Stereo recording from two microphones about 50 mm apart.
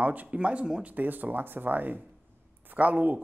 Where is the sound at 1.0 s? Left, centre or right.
Right.